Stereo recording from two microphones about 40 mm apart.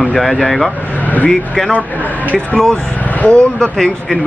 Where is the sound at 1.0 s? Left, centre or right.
Left.